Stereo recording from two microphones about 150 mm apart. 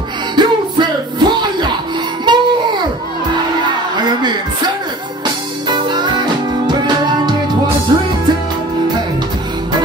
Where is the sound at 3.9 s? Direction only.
30° right (ahead or behind).